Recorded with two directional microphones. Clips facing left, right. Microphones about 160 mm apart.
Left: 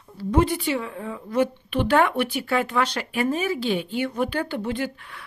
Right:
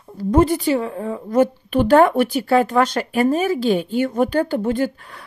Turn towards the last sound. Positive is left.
turn(degrees=-45)  # may be behind; listen again after turning